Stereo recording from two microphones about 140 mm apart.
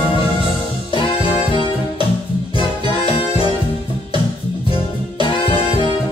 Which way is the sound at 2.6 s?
40° left (ahead or behind).